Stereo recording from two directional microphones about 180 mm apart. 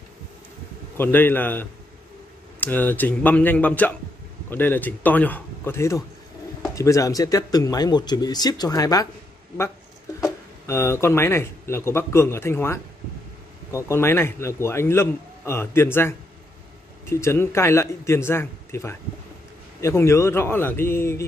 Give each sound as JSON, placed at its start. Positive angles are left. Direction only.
{"t": 0.9, "sound": "a man's voice", "side_deg": 10}
{"t": 10.2, "sound": "a man's voice", "side_deg": 15}